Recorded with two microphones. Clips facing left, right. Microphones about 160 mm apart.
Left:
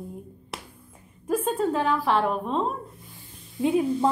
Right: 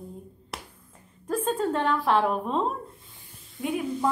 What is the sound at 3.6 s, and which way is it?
Speech, 25° left (ahead or behind).